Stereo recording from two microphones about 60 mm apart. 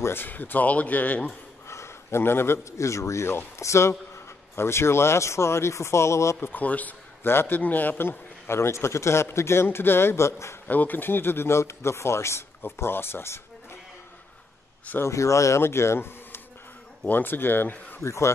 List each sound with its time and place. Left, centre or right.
0.0 s speech: left
1.7 s speech: left
6.4 s speech: left
7.2 s a man's voice: left
8.5 s speech: left
10.7 s speech: left
15.0 s speech: left
17.1 s a man's voice: left
18.0 s speech: left